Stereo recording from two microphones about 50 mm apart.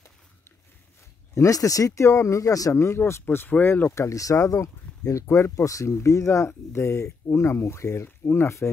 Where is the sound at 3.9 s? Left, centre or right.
Left.